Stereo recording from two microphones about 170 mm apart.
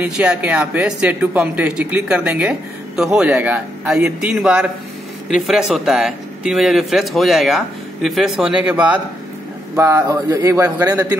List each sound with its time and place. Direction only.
0.0 s a man's voice: 5° right (ahead or behind)